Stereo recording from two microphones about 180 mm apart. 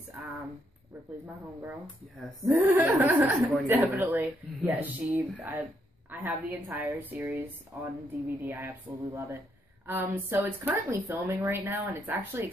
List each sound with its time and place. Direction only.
1.2 s speech: 15° right (ahead or behind)